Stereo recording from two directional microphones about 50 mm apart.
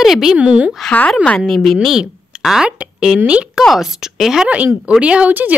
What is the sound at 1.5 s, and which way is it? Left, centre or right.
Speech, centre.